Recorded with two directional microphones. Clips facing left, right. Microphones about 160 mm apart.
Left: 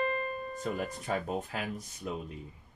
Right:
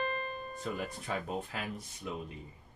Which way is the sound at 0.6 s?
45° left (ahead or behind).